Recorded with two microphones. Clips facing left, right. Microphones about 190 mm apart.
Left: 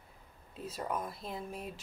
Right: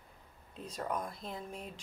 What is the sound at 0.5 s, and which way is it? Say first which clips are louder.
Speech: even; 5° left (ahead or behind).